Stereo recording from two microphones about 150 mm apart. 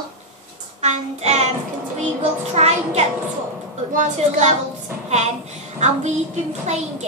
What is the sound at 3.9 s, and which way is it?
Speech, 60° right (ahead or behind).